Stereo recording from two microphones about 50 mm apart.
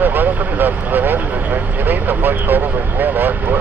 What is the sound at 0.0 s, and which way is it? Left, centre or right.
Speech, right.